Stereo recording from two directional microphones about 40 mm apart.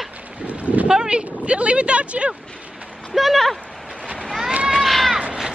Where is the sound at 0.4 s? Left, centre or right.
Right.